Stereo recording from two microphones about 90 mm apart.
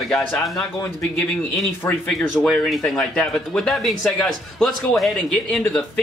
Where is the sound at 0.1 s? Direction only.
5° left (ahead or behind).